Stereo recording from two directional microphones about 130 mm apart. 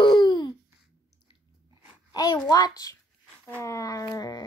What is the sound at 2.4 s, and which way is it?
Speech, 30° left (ahead or behind).